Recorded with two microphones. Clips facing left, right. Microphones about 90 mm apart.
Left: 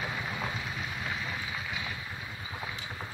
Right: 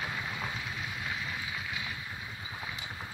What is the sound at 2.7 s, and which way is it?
Boat, 5° right (ahead or behind).